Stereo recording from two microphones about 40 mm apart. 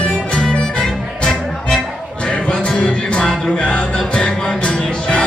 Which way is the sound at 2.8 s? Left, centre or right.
Left.